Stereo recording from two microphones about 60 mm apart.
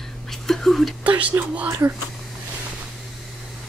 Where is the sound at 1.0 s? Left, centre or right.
Right.